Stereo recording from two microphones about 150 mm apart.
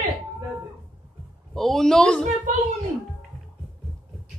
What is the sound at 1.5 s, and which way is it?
Speech, centre (ahead or behind).